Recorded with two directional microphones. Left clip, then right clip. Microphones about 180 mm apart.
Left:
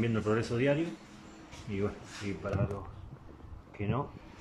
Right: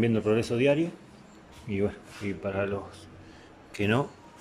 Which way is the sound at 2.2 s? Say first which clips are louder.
Right 5 dB; 15° right (ahead or behind).